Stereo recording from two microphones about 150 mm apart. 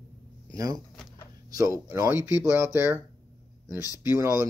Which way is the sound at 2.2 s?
25° left (ahead or behind).